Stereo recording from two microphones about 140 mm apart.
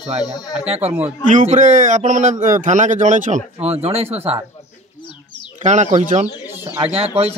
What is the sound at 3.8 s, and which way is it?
Speech, 45° right (ahead or behind).